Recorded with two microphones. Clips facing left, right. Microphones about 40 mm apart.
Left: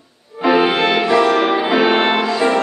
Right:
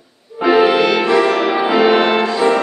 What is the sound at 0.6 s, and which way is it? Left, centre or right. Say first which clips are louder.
Music: right 2 dB; left.